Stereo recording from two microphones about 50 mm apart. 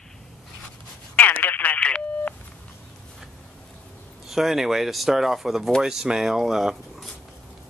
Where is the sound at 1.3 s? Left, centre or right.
Left.